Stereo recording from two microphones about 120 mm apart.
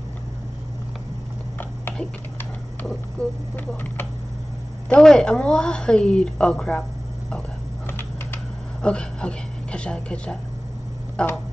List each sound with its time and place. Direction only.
1.6 s typing: 15° left (ahead or behind)
3.2 s a woman's voice: 15° left (ahead or behind)
7.8 s a sound: 20° left (ahead or behind)
8.8 s a woman's voice: 10° left (ahead or behind)